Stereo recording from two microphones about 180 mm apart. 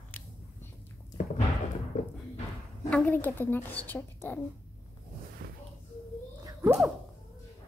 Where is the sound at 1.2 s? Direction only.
50° left (ahead or behind).